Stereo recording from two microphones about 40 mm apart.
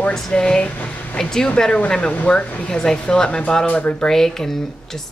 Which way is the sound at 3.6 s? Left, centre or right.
Left.